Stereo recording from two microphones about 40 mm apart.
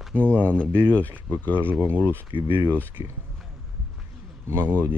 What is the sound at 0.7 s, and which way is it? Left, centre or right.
Speech, left.